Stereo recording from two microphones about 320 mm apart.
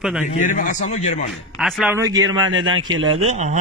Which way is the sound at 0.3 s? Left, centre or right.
Left.